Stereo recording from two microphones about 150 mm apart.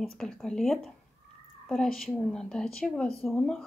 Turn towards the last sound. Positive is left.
turn(degrees=5)  # may be behind; listen again after turning